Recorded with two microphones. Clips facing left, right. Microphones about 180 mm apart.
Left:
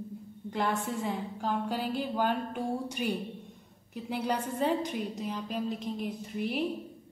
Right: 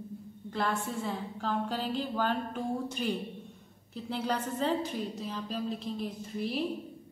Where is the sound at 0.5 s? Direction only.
15° left (ahead or behind).